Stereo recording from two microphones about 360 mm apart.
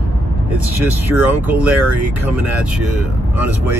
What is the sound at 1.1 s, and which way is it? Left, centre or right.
Speech, centre.